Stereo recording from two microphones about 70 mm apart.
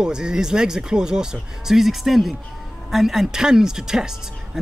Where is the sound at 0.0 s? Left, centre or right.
Centre.